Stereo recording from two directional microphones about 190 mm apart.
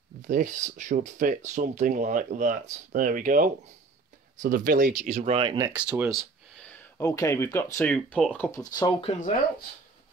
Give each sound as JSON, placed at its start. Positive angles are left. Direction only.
{"t": 0.2, "sound": "speech", "side_deg": -40}
{"t": 5.7, "sound": "speech", "side_deg": -5}
{"t": 8.7, "sound": "speech", "side_deg": 25}